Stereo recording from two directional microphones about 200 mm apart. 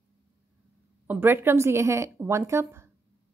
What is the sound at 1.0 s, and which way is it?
A woman's voice, 10° right (ahead or behind).